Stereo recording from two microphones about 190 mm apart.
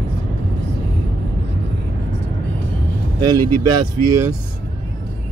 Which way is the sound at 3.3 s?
15° right (ahead or behind).